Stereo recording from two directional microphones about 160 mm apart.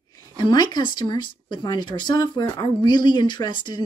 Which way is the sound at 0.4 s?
25° left (ahead or behind).